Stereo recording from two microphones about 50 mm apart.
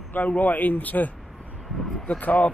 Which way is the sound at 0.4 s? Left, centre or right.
Left.